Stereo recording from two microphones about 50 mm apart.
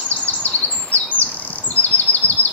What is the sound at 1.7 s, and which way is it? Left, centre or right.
Chirp, left.